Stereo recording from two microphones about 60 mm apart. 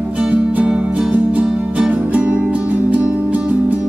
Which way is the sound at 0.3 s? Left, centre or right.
Right.